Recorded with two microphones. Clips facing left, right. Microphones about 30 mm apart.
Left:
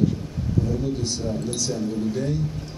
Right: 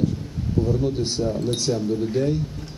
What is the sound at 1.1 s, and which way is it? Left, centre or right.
Speech, centre.